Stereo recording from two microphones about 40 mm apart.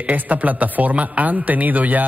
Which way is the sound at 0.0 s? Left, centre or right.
Right.